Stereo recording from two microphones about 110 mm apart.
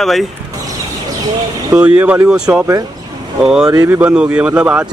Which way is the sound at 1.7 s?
10° right (ahead or behind).